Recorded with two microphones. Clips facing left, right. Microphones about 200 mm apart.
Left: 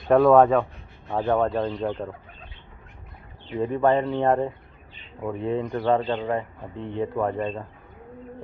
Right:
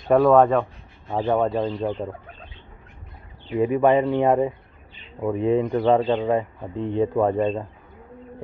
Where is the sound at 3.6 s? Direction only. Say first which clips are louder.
Right 3 dB; 10° right (ahead or behind).